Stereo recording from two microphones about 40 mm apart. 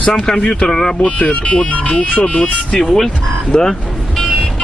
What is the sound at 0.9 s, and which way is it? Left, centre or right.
Speech, left.